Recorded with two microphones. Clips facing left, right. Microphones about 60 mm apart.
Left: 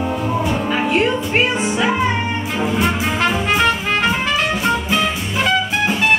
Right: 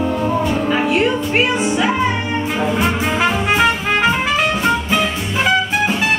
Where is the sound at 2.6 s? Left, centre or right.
Centre.